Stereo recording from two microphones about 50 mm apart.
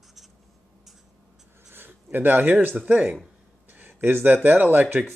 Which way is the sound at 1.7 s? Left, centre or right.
Right.